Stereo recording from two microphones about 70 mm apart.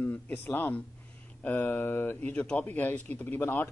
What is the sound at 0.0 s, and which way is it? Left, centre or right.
Speech, left.